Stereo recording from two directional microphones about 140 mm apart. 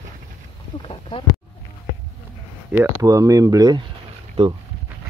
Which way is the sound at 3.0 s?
25° right (ahead or behind).